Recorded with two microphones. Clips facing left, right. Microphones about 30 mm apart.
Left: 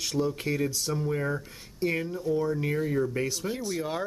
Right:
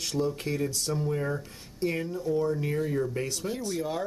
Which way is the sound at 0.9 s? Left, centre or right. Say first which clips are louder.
Even; centre.